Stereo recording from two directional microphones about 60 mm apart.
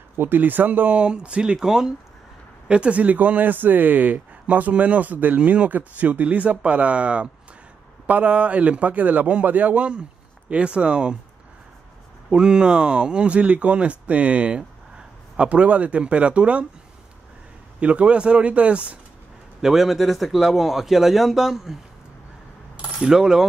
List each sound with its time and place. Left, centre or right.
0.2 s speech: right
1.0 s speech: centre
2.7 s speech: centre
12.3 s speech: centre
17.7 s speech: right
19.6 s speech: centre
22.8 s coin: centre